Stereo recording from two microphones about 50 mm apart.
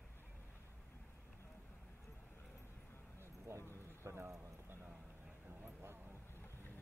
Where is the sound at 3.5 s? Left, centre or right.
Right.